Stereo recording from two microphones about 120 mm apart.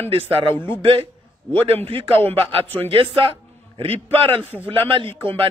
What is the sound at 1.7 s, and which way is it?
A man's voice, 55° right (ahead or behind).